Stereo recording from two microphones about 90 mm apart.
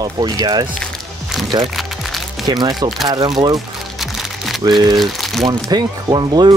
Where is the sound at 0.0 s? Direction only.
45° right (ahead or behind).